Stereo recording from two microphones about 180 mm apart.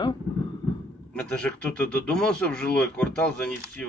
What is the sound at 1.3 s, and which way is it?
Speech, 5° left (ahead or behind).